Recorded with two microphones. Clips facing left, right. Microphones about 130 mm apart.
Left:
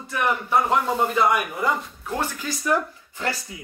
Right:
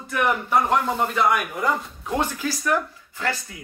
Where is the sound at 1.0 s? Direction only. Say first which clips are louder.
Left 1 dB; 15° left (ahead or behind).